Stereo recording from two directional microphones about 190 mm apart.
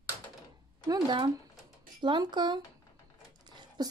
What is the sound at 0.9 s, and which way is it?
A woman's voice, 25° right (ahead or behind).